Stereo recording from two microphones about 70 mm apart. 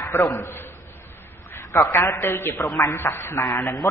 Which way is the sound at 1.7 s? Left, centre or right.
Left.